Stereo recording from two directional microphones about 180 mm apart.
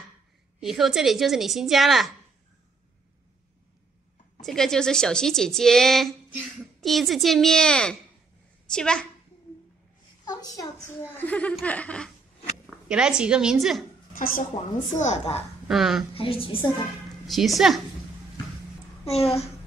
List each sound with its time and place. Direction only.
0.6 s speech: centre (ahead or behind)
4.4 s speech: centre (ahead or behind)
10.2 s a woman's voice: 20° left (ahead or behind)
12.6 s zipper: 5° right (ahead or behind)
13.2 s speech: 5° right (ahead or behind)
14.1 s a woman's voice: 50° left (ahead or behind)
15.0 s a woman's voice: 40° left (ahead or behind)
15.7 s speech: centre (ahead or behind)
16.2 s a woman's voice: 30° left (ahead or behind)
17.3 s speech: centre (ahead or behind)
19.0 s a woman's voice: 35° left (ahead or behind)